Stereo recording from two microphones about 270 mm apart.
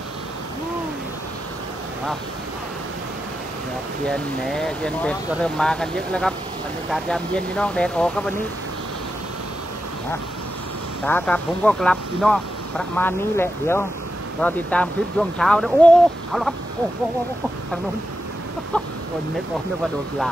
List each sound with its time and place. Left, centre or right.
4.1 s speech: centre
11.1 s speech: centre